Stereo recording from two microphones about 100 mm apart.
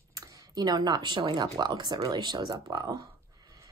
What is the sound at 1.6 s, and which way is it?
Speech, 45° right (ahead or behind).